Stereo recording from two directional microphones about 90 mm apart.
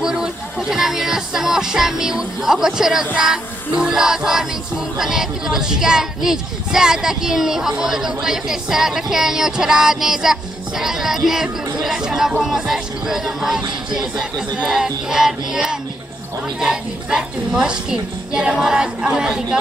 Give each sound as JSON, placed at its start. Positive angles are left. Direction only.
{"t": 0.0, "sound": "a woman's voice", "side_deg": -5}